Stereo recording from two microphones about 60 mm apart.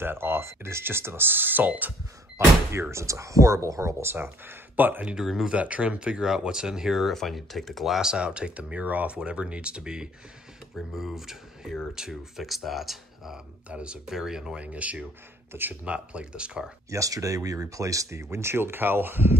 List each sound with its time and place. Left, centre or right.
0.0 s speech: right
2.3 s speech: right
4.0 s speech: right
5.2 s speech: centre
5.5 s speech: right; by 8.1 s centre
8.1 s speech: centre
10.9 s speech: centre
13.7 s speech: centre
14.0 s speech: centre
14.6 s speech: right
16.9 s speech: right